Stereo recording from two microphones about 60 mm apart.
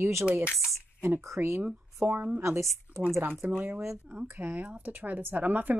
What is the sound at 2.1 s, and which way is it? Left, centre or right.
Speech, right.